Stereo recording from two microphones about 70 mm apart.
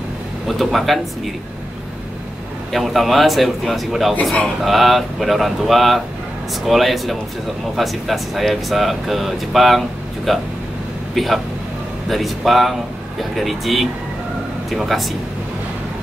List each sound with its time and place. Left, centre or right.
0.5 s speech: centre
2.7 s speech: centre